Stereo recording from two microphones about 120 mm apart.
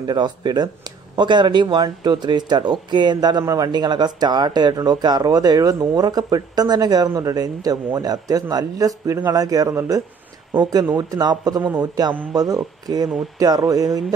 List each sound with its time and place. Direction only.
0.0 s a man's voice: 35° right (ahead or behind)